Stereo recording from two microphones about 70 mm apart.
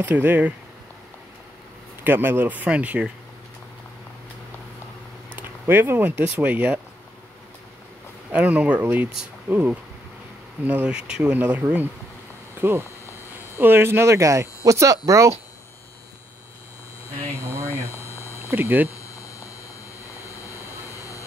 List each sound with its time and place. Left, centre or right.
0.0 s speech: right
2.0 s speech: right
5.3 s speech: right
8.3 s speech: centre
11.0 s speech: centre
11.3 s speech: right
12.5 s speech: right
17.6 s a sound: left
18.5 s speech: right
18.9 s a sound: left
20.1 s vehicle: left